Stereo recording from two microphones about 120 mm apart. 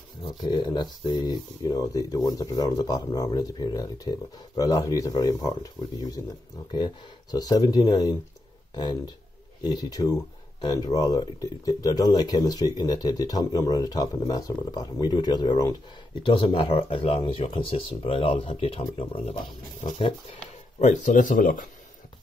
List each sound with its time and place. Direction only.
0.3 s speech: 40° left (ahead or behind); by 21.6 s 90° left